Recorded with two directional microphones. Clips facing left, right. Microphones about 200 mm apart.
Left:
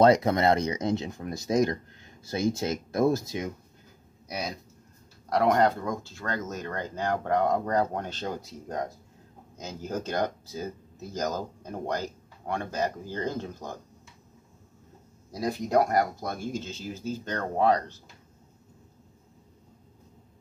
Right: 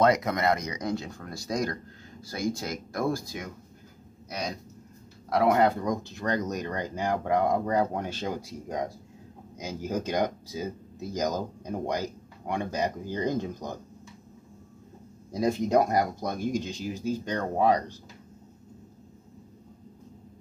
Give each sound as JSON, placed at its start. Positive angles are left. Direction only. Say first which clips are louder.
{"t": 0.0, "sound": "speech", "louder": "left 3 dB", "side_deg": 30}
{"t": 4.3, "sound": "speech", "louder": "even", "side_deg": 5}
{"t": 5.3, "sound": "speech", "louder": "even", "side_deg": -5}
{"t": 15.3, "sound": "speech", "louder": "right 2 dB", "side_deg": -20}